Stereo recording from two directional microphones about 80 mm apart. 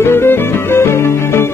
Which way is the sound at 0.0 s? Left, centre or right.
Left.